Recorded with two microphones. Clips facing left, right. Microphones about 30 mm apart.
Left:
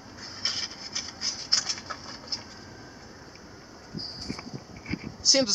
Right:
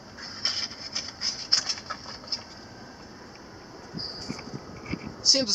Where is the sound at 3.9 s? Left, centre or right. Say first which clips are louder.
Even; right.